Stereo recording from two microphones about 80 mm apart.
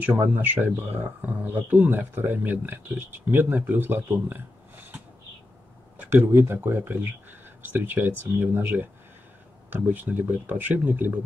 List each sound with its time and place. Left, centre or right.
0.0 s speech: right
6.3 s speech: right